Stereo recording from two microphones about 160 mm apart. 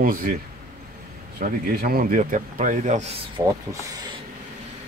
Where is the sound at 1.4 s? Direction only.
60° right (ahead or behind).